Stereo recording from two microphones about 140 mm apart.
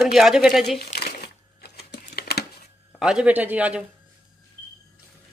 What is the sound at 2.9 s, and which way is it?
Speech, 5° right (ahead or behind).